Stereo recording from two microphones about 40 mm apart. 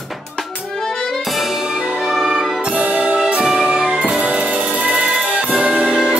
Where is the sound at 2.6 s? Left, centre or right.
Right.